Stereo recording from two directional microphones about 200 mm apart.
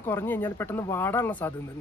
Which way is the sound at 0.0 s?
10° left (ahead or behind).